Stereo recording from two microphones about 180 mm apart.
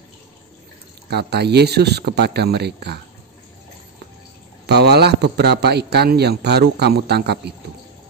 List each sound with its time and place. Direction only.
1.1 s a man's voice: 65° right (ahead or behind)
4.6 s a man's voice: 65° right (ahead or behind)